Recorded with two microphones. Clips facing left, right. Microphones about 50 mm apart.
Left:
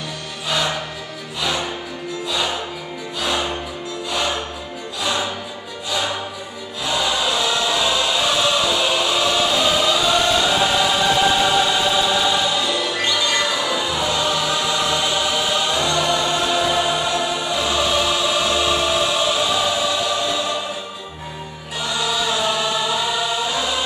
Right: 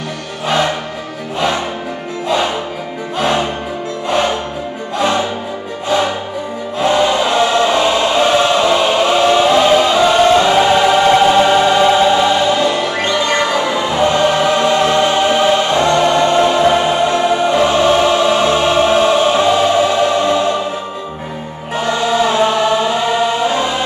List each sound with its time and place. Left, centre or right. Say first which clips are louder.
0.5 s music: right 7 dB; right
2.2 s music: right 8 dB; right
4.9 s music: right 8 dB; right
6.8 s choir: right 8 dB; right
21.7 s choir: right 8 dB; right